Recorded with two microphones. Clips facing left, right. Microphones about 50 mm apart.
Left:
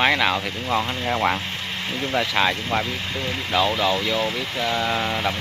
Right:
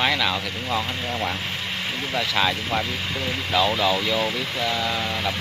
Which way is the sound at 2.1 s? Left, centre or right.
Centre.